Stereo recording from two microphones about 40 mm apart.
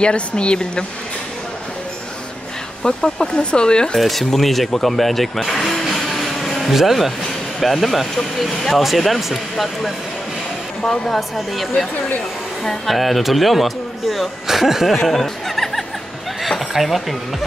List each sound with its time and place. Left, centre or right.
0.0 s speech: left
2.8 s speech: centre
4.0 s speech: centre
6.7 s a man's voice: centre
12.8 s a man's voice: centre
16.4 s a sound: centre